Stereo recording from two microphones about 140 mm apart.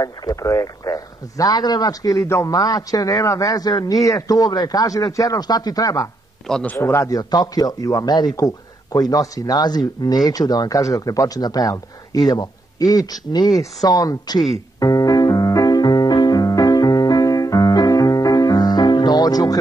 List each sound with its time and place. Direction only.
0.0 s a man's voice: 25° left (ahead or behind)
5.9 s a man's voice: 5° left (ahead or behind); by 8.3 s 30° left (ahead or behind)
8.4 s a sound: 25° left (ahead or behind)
9.1 s a man's voice: 25° left (ahead or behind)
13.5 s speech: centre (ahead or behind)
13.8 s a man's voice: 25° left (ahead or behind)
14.8 s music: 25° left (ahead or behind)